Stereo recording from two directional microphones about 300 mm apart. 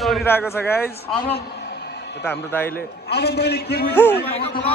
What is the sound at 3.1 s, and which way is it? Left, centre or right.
Speech, left.